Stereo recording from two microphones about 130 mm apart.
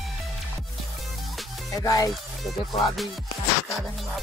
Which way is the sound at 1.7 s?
25° left (ahead or behind).